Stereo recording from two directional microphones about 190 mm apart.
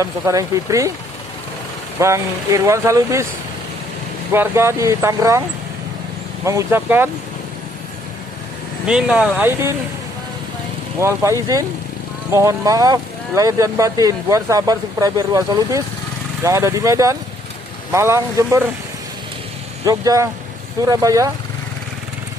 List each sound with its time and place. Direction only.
0.0 s speech: 15° right (ahead or behind)
2.0 s speech: 15° right (ahead or behind)
4.3 s speech: 15° right (ahead or behind)
6.4 s speech: 15° right (ahead or behind)
8.8 s speech: 5° right (ahead or behind)
11.0 s speech: 15° right (ahead or behind)
19.8 s speech: 20° right (ahead or behind)